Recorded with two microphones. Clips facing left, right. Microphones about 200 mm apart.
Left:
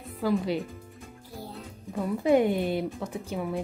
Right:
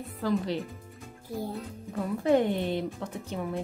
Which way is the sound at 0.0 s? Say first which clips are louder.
Left 2 dB; centre (ahead or behind).